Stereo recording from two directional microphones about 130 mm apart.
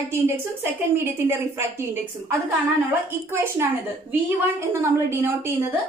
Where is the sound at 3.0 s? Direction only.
15° right (ahead or behind).